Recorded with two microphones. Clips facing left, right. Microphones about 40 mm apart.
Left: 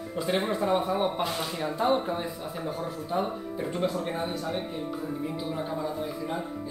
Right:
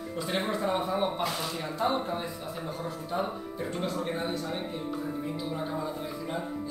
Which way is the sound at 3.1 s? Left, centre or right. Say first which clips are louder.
Left 3 dB; centre.